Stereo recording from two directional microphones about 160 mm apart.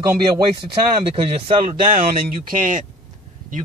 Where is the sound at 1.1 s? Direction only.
35° right (ahead or behind).